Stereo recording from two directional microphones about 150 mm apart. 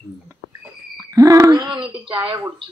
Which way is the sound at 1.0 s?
20° right (ahead or behind).